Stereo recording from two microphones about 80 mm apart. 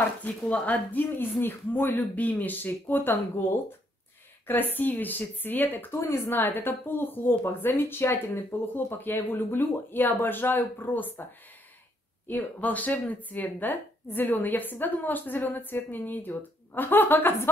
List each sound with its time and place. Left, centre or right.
0.5 s a woman's voice: centre
5.9 s a woman's voice: left
12.3 s a woman's voice: left